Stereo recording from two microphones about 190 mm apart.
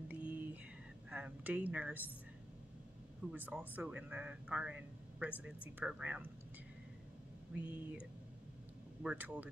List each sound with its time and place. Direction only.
0.1 s a sound: 5° right (ahead or behind)
1.1 s speech: 5° right (ahead or behind)
3.3 s a man's voice: 10° right (ahead or behind)
7.5 s a man's voice: 5° right (ahead or behind)
9.0 s a man's voice: 5° right (ahead or behind)